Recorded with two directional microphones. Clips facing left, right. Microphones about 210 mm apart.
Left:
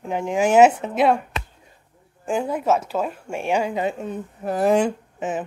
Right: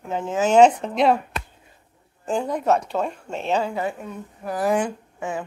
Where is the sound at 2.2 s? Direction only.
5° left (ahead or behind).